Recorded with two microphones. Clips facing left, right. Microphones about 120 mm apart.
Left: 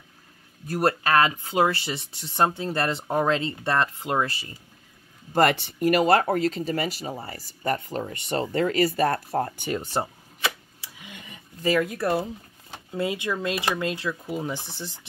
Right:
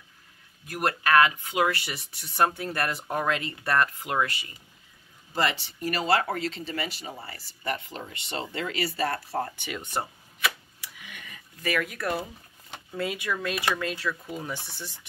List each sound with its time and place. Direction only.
0.7 s speech: 30° left (ahead or behind)
5.3 s speech: 55° left (ahead or behind); by 10.5 s 30° left (ahead or behind)
11.0 s a sound: 20° left (ahead or behind)
12.9 s speech: 20° left (ahead or behind)